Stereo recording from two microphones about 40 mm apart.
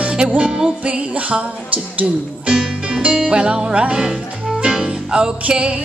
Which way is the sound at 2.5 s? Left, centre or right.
Right.